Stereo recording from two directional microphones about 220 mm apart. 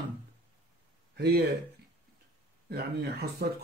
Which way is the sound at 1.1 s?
50° right (ahead or behind).